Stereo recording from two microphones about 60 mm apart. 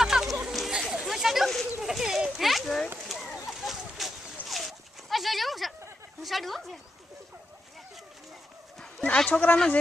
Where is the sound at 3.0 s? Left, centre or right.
Centre.